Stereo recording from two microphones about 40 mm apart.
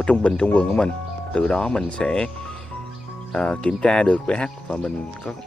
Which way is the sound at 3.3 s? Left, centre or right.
Left.